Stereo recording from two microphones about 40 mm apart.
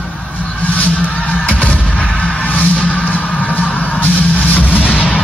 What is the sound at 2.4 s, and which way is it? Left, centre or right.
Music, left.